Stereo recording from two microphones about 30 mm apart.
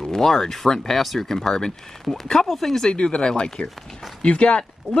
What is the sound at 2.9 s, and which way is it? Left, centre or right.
Speech, left.